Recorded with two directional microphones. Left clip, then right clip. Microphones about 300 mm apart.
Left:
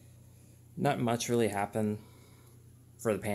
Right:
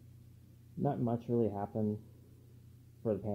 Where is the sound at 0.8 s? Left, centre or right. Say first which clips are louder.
Left 6 dB; left.